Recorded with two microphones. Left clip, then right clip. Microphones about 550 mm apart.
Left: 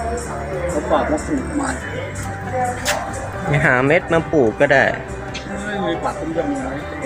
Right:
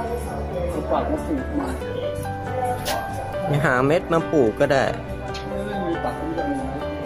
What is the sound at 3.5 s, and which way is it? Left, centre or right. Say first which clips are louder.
Speech: left 5 dB; right.